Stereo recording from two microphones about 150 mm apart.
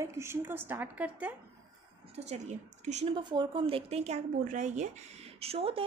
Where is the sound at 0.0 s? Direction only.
20° right (ahead or behind).